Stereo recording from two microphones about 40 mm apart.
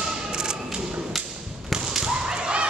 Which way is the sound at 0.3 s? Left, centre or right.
Centre.